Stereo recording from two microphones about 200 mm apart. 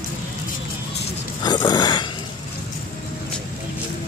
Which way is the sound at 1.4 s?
20° left (ahead or behind).